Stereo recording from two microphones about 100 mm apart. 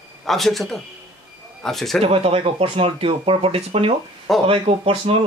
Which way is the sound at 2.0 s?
85° right.